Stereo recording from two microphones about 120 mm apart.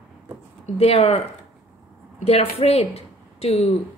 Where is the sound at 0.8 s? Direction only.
60° left (ahead or behind).